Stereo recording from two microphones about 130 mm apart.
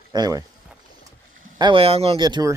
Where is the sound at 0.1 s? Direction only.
30° right (ahead or behind).